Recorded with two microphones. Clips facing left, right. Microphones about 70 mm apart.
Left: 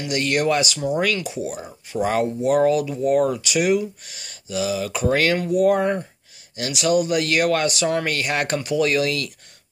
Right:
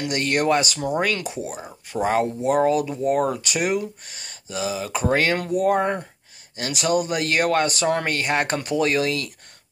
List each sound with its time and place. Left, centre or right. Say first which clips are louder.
0.0 s speech: left 1 dB; right
8.5 s speech: left 1 dB; right